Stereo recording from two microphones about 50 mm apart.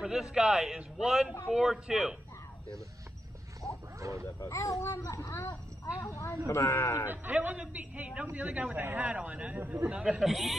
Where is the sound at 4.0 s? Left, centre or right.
Right.